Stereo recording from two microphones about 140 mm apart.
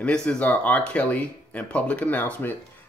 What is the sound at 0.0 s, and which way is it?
Speech, 5° left (ahead or behind).